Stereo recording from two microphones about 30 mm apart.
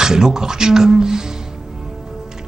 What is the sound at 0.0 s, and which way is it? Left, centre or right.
A woman's voice, right.